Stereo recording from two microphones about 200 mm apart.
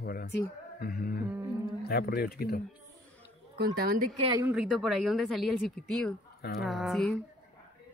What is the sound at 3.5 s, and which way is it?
Speech, 50° right (ahead or behind).